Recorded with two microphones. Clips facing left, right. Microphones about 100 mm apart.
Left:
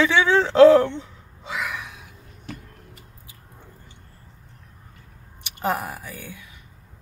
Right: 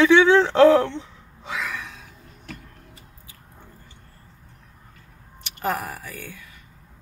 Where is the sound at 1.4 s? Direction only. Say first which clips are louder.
Even; 15° left (ahead or behind).